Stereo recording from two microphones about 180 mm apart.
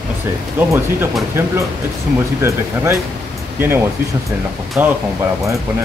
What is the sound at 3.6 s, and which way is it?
Speech, 15° right (ahead or behind).